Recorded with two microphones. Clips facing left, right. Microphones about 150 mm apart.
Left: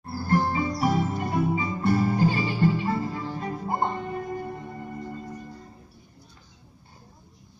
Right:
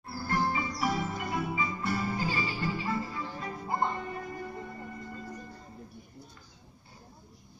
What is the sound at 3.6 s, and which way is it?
Music, 25° left (ahead or behind).